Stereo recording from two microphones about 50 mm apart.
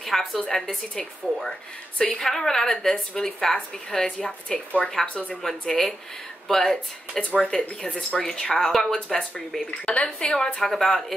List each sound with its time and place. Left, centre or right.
0.0 s speech: centre; by 5.4 s left
5.4 s speech: centre
10.7 s speech: centre